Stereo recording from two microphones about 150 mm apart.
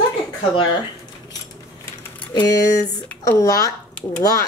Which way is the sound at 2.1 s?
25° left (ahead or behind).